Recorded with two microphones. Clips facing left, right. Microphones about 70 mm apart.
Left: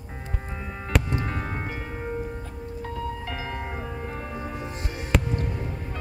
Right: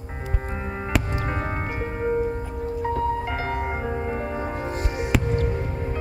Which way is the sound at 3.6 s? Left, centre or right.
Right.